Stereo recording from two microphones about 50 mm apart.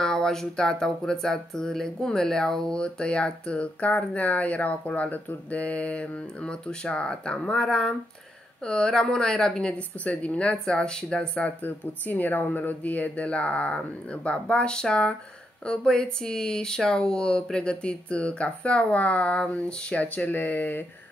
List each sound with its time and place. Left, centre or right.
0.0 s speech: centre
10.0 s speech: left
11.6 s speech: left